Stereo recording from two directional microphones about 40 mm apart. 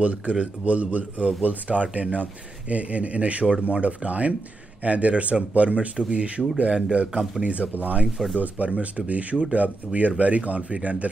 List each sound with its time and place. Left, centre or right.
0.0 s a man's voice: right
7.6 s speech: left
8.4 s speech: right